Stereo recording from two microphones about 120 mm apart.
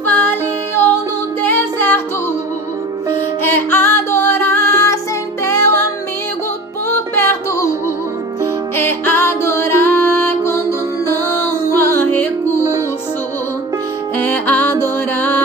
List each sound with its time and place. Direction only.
0.0 s music: 15° left (ahead or behind)
1.4 s music: 15° left (ahead or behind)
3.4 s music: 15° left (ahead or behind)
6.9 s music: 20° left (ahead or behind)
8.7 s music: 20° left (ahead or behind)
11.8 s music: 15° left (ahead or behind)
14.1 s music: 15° left (ahead or behind)